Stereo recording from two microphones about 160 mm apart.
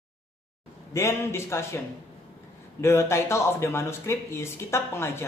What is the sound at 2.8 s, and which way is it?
A man's voice, 15° left (ahead or behind).